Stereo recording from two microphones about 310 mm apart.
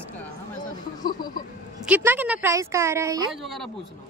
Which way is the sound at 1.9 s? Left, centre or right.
Centre.